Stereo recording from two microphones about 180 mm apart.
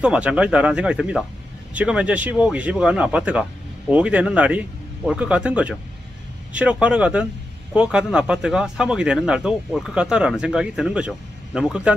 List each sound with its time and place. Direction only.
0.0 s speech: 5° right (ahead or behind)